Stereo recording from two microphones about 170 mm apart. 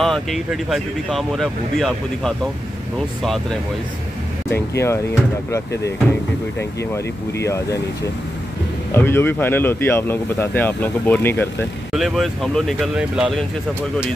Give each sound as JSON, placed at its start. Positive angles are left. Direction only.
{"t": 0.0, "sound": "speech", "side_deg": 0}
{"t": 4.5, "sound": "speech", "side_deg": 15}
{"t": 7.3, "sound": "speech", "side_deg": 15}
{"t": 8.9, "sound": "speech", "side_deg": 15}
{"t": 11.9, "sound": "speech", "side_deg": 0}